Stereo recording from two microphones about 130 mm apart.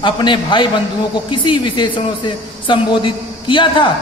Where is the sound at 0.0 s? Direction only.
40° left (ahead or behind).